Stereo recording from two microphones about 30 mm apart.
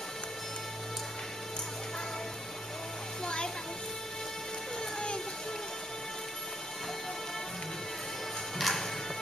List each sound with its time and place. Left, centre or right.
8.5 s music: centre